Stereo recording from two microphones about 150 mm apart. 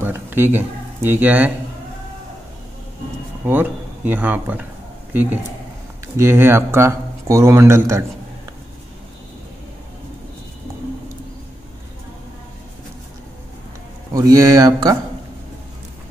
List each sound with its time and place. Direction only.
0.0 s speech: 15° right (ahead or behind)
3.4 s speech: 10° right (ahead or behind)
14.1 s speech: 25° right (ahead or behind)